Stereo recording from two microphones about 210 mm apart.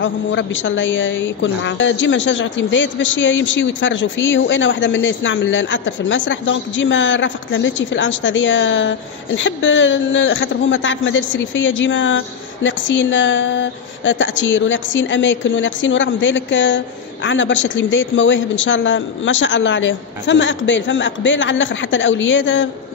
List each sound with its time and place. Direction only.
0.0 s a woman's voice: 60° left (ahead or behind)